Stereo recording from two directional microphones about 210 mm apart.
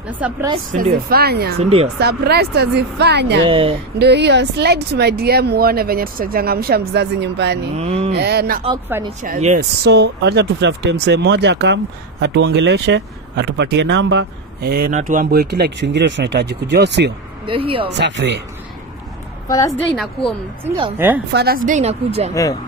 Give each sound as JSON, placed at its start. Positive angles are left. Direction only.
{"t": 0.7, "sound": "speech", "side_deg": -45}
{"t": 1.6, "sound": "speech", "side_deg": -30}
{"t": 2.0, "sound": "speech", "side_deg": -50}
{"t": 3.4, "sound": "speech", "side_deg": -25}
{"t": 4.0, "sound": "speech", "side_deg": -55}
{"t": 7.7, "sound": "a woman's voice", "side_deg": -30}
{"t": 8.1, "sound": "a woman's voice", "side_deg": -50}
{"t": 9.8, "sound": "speech", "side_deg": -50}
{"t": 17.5, "sound": "speech", "side_deg": -25}
{"t": 17.9, "sound": "speech", "side_deg": -55}
{"t": 19.4, "sound": "a woman's voice", "side_deg": 15}
{"t": 21.3, "sound": "a woman's voice", "side_deg": -50}
{"t": 22.3, "sound": "a woman's voice", "side_deg": 15}